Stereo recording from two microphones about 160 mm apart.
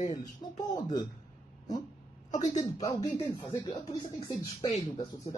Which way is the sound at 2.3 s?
50° left (ahead or behind).